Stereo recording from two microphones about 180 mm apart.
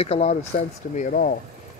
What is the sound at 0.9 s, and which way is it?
Speech, 45° left (ahead or behind).